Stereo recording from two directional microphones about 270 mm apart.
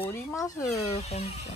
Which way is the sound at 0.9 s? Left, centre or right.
Left.